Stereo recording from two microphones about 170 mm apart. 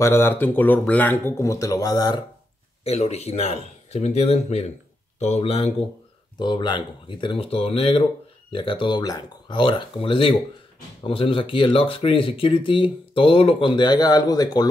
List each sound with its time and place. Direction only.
0.0 s speech: 15° left (ahead or behind)
2.8 s speech: 40° left (ahead or behind)